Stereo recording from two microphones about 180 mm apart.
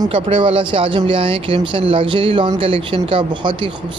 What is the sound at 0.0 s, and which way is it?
Speech, 30° right (ahead or behind).